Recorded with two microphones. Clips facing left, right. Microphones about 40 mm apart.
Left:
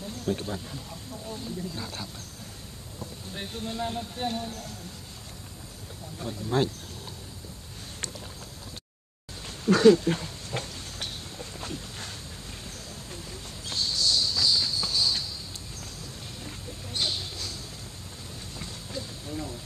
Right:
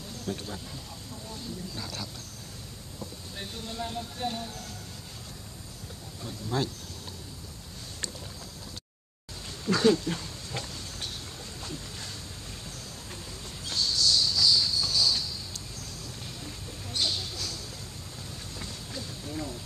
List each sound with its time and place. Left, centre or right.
0.2 s speech: centre
3.3 s speech: left
6.2 s speech: left
9.7 s a sound: left
13.7 s a sound: centre
16.4 s mouse: centre
18.6 s train: centre